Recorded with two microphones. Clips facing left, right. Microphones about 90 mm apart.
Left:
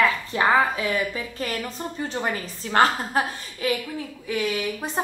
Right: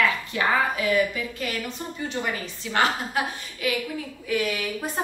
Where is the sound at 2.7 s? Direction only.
40° left (ahead or behind).